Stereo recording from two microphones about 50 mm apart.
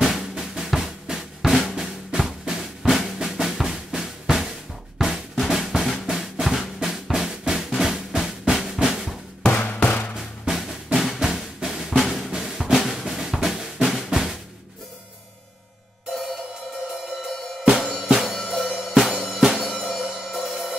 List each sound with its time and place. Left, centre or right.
0.0 s drum: centre
1.5 s drum: centre
2.1 s drum: centre
3.2 s drum: centre
9.4 s music: left
10.6 s drum: centre
17.2 s music: centre